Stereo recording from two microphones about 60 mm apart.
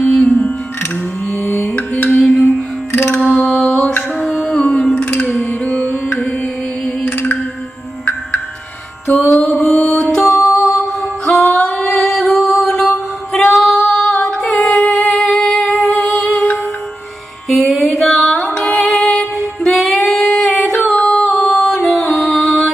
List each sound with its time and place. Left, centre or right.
0.0 s music: centre
1.5 s music: centre
2.9 s music: left
3.4 s mantra: centre
4.2 s music: centre
7.1 s music: left
9.1 s music: left
9.4 s mantra: centre
9.9 s music: centre
10.3 s music: left
11.2 s music: centre
13.3 s female singing: centre
13.8 s music: centre